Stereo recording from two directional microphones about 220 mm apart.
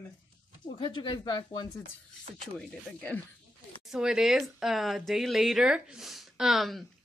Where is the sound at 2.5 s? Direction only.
5° left (ahead or behind).